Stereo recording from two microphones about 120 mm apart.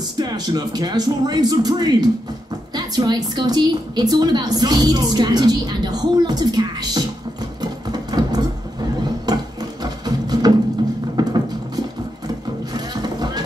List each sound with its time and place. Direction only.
0.2 s a woman's voice: 35° right (ahead or behind)
7.6 s a sound: 35° right (ahead or behind)
9.8 s music: 35° right (ahead or behind)